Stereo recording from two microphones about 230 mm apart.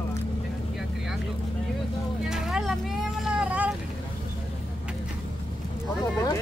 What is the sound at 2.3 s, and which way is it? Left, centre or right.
Speech, centre.